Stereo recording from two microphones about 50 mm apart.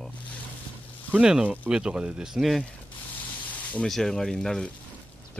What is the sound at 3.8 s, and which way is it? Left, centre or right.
Speech, centre.